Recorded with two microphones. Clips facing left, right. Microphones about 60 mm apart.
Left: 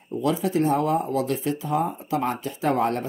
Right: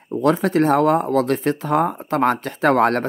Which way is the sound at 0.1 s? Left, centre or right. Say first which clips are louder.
Right 6 dB; right.